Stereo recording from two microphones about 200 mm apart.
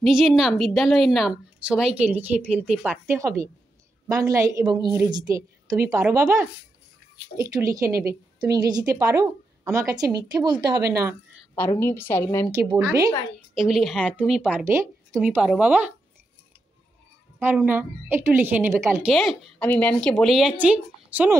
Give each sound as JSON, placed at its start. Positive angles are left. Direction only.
{"t": 0.0, "sound": "a woman's voice", "side_deg": 0}
{"t": 11.5, "sound": "a woman's voice", "side_deg": 10}
{"t": 13.6, "sound": "a woman's voice", "side_deg": 0}
{"t": 17.4, "sound": "a woman's voice", "side_deg": -10}
{"t": 19.0, "sound": "a woman's voice", "side_deg": 0}